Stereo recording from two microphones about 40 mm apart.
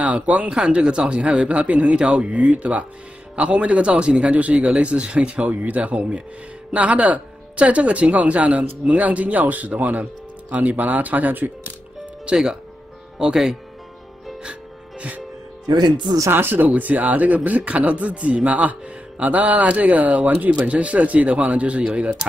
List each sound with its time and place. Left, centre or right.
0.0 s speech: right
0.5 s speech: right
12.3 s speech: centre
14.5 s music: right
16.3 s speech: right
16.6 s speech: right
20.5 s speech: right